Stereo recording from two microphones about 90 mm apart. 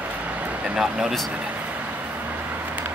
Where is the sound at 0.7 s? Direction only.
5° right (ahead or behind).